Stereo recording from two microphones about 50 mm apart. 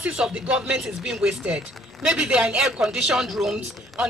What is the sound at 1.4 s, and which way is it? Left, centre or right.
A man's voice, right.